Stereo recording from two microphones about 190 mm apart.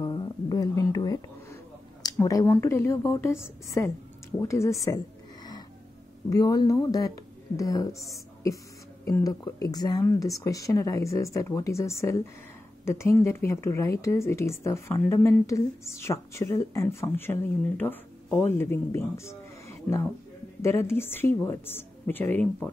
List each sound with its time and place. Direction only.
0.0 s music: 20° left (ahead or behind)
2.0 s speech: 20° left (ahead or behind)
6.3 s speech: 20° left (ahead or behind)
9.0 s speech: 20° left (ahead or behind)